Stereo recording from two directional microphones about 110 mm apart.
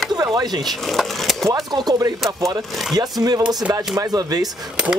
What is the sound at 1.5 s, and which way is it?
Speech, 35° right (ahead or behind).